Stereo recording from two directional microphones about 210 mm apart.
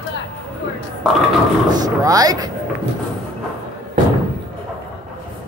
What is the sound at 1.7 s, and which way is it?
Speech, 20° right (ahead or behind).